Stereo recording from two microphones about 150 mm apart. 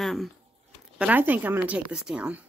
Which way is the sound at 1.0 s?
10° right (ahead or behind).